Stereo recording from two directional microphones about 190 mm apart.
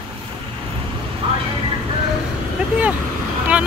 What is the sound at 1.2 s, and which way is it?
Speech, 30° right (ahead or behind).